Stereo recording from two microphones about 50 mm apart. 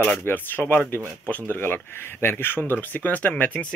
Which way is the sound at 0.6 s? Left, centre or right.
Left.